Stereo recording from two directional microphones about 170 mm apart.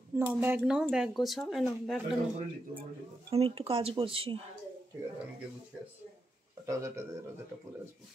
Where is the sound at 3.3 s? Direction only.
35° right (ahead or behind).